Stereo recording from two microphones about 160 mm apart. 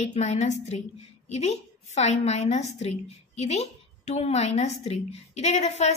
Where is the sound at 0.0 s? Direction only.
45° left (ahead or behind).